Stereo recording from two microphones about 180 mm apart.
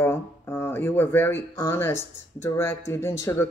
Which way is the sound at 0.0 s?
15° left (ahead or behind).